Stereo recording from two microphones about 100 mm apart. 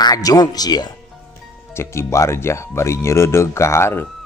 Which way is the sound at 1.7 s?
25° left (ahead or behind).